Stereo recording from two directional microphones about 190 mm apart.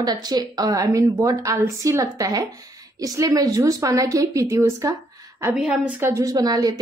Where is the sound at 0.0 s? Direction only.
20° right (ahead or behind).